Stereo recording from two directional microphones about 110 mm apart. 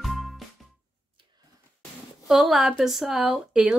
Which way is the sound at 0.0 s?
Centre (ahead or behind).